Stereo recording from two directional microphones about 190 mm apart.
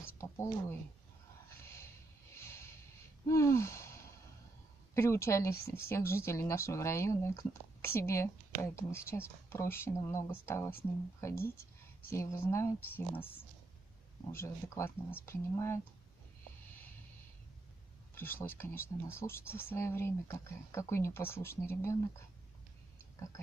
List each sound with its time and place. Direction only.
0.2 s speech: 15° left (ahead or behind)
1.6 s a sound: 15° left (ahead or behind)
2.3 s music: 15° left (ahead or behind)
3.3 s gasp: 15° left (ahead or behind)
4.9 s speech: 15° left (ahead or behind)
18.1 s speech: 10° left (ahead or behind)